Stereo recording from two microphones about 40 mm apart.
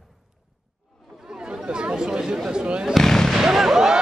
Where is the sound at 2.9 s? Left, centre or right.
Centre.